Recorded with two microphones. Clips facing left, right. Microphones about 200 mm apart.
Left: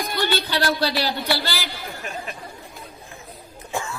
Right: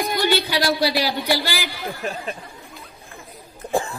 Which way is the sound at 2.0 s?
35° right (ahead or behind).